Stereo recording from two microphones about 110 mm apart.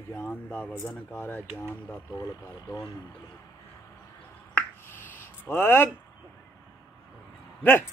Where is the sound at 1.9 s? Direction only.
30° left (ahead or behind).